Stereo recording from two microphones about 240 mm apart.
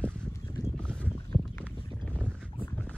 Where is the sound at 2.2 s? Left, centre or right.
Centre.